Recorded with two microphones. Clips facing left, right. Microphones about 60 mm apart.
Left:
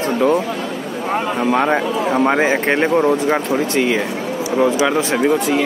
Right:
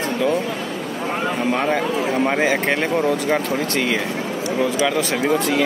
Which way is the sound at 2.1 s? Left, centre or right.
Centre.